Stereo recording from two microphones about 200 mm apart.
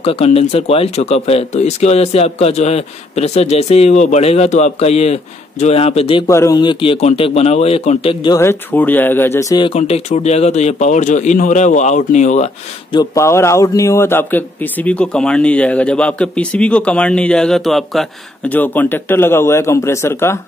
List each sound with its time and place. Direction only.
0.0 s speech: 30° left (ahead or behind)
6.2 s speech: 15° left (ahead or behind); by 12.4 s 35° left (ahead or behind)
12.9 s a man's voice: 15° left (ahead or behind)